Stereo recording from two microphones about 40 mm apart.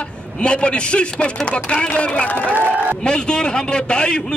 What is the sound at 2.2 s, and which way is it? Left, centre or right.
Speech, left.